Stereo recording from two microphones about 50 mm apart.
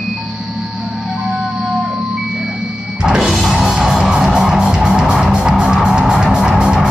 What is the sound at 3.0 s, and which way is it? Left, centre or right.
Music, centre.